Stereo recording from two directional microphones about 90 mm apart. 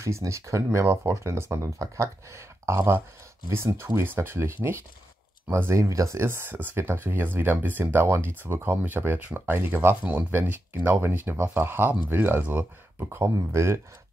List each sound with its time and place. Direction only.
0.0 s speech: 35° right (ahead or behind)